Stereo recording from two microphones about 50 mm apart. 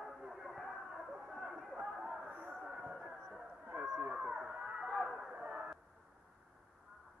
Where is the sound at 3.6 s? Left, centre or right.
Right.